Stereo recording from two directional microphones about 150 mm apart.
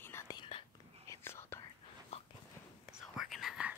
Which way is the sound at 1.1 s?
15° left (ahead or behind).